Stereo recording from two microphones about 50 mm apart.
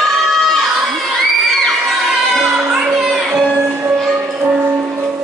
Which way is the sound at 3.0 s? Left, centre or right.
Centre.